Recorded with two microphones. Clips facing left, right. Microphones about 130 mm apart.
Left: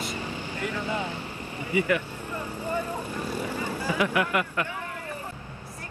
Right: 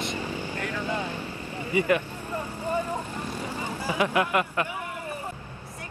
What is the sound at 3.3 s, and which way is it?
Vehicle, 10° left (ahead or behind).